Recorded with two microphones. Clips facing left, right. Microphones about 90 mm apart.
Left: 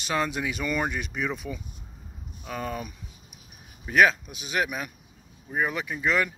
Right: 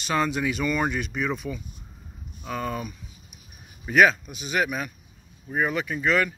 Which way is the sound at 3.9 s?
Centre (ahead or behind).